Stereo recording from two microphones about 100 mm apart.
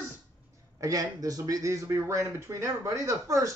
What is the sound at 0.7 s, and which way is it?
Speech, 35° right (ahead or behind).